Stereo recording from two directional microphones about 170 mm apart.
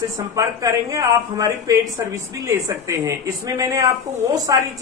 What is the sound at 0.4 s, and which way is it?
A man's voice, 20° right (ahead or behind).